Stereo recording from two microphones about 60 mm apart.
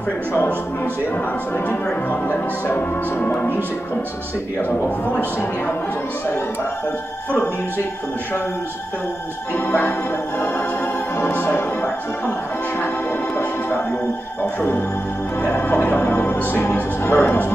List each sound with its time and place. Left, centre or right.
2.0 s speech: left
4.6 s speech: left
9.7 s speech: left
13.4 s speech: left
15.7 s speech: left